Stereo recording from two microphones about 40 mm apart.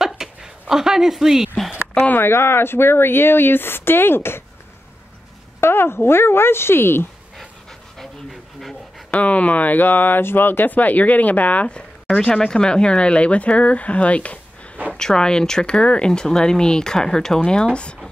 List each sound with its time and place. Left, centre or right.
0.0 s a sound: centre
2.1 s speech: left
5.6 s speech: left
8.0 s speech: centre
9.1 s speech: left
10.2 s speech: left
10.7 s speech: left
12.2 s speech: centre
15.0 s speech: centre